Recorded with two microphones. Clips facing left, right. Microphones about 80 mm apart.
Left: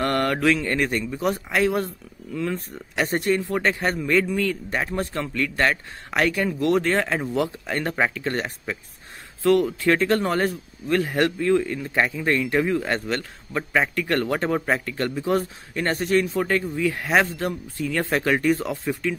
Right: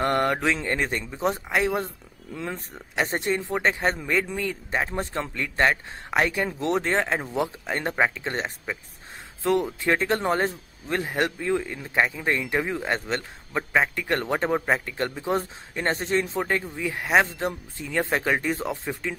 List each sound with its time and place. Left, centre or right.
0.0 s speech: centre